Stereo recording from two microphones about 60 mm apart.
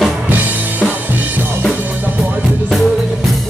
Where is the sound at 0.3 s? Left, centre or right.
Right.